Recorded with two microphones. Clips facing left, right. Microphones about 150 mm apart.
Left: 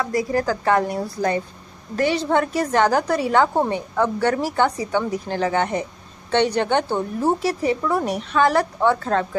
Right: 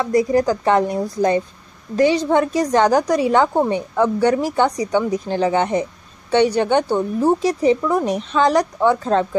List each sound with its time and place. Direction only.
0.0 s a woman's voice: 20° right (ahead or behind)